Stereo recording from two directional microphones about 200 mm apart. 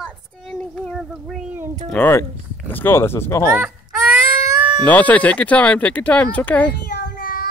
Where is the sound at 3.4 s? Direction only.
10° right (ahead or behind).